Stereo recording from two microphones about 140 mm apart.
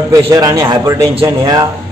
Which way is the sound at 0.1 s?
25° right (ahead or behind).